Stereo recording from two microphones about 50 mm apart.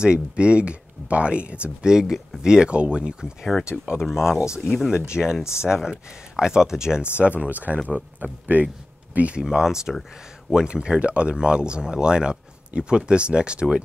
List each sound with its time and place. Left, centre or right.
0.0 s speech: centre
2.4 s speech: centre
3.5 s speech: centre
4.9 s speech: centre
5.4 s speech: left
5.7 s speech: centre
7.2 s speech: right
9.4 s speech: centre